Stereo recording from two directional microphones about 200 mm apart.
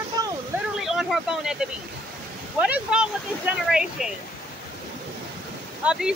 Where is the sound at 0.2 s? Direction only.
20° right (ahead or behind).